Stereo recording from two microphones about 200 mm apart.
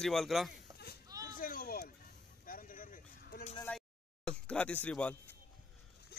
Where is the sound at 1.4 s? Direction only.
45° left (ahead or behind).